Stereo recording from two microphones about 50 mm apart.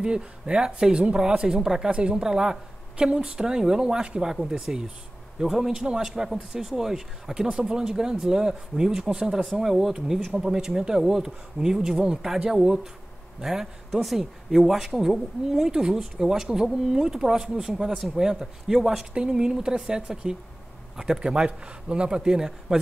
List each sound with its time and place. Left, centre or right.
0.0 s speech: centre
1.9 s speech: right
2.1 s speech: centre
17.8 s speech: centre
19.1 s speech: centre